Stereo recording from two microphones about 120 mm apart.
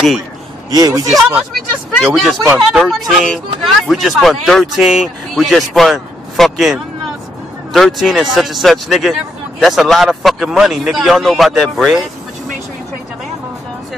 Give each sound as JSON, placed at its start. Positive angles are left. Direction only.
{"t": 0.7, "sound": "speech", "side_deg": -30}
{"t": 1.5, "sound": "speech", "side_deg": 0}